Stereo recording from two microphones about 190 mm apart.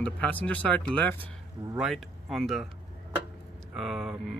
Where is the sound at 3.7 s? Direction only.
Centre (ahead or behind).